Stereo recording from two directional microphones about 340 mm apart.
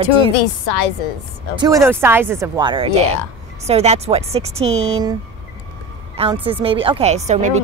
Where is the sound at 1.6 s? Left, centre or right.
Centre.